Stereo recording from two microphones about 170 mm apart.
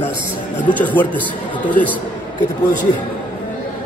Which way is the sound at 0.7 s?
10° left (ahead or behind).